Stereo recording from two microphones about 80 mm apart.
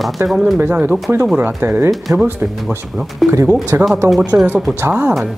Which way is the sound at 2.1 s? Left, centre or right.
Right.